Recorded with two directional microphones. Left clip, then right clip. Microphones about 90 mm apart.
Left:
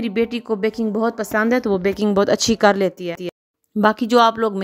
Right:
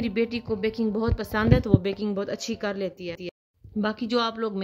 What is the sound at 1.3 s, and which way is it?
Speech, 15° left (ahead or behind).